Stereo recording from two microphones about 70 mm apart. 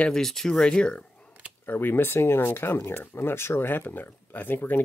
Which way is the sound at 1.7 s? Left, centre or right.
Left.